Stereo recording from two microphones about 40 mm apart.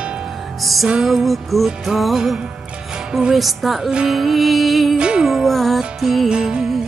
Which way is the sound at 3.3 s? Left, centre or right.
Centre.